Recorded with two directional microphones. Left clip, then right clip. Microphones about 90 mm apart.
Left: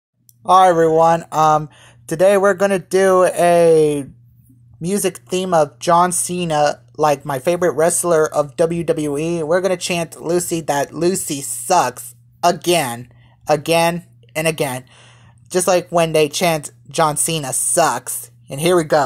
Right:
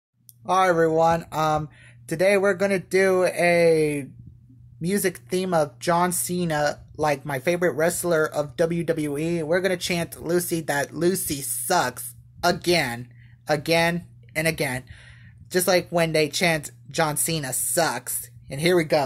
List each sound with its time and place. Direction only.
0.4 s speech: 40° left (ahead or behind)
4.8 s speech: 35° left (ahead or behind)